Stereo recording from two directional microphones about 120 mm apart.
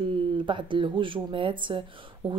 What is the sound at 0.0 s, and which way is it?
A woman's voice, 45° right (ahead or behind).